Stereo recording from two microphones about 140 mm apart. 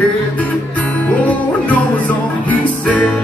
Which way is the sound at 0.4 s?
10° left (ahead or behind).